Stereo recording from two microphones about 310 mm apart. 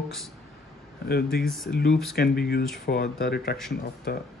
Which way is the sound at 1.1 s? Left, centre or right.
Left.